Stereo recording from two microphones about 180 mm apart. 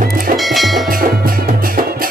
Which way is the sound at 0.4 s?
Centre (ahead or behind).